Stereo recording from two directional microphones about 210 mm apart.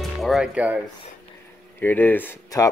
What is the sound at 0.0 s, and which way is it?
Speech, centre (ahead or behind).